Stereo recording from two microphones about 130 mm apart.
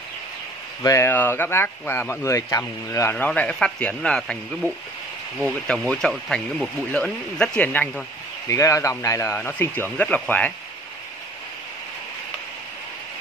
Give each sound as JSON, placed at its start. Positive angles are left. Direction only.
{"t": 0.8, "sound": "speech", "side_deg": 20}
{"t": 3.3, "sound": "speech", "side_deg": 10}
{"t": 5.7, "sound": "speech", "side_deg": 5}
{"t": 8.5, "sound": "speech", "side_deg": 25}